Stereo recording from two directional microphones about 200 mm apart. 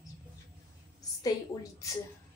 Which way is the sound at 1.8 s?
15° left (ahead or behind).